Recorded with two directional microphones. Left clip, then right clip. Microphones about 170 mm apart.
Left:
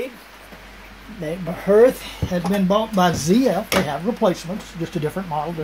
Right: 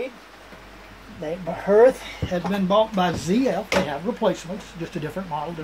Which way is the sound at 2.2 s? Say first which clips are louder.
Left 3 dB; 45° left (ahead or behind).